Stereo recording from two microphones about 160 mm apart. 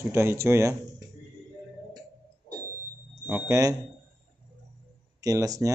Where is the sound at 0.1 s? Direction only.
15° right (ahead or behind).